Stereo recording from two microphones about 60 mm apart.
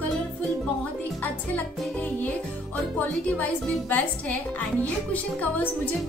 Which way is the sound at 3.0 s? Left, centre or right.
Left.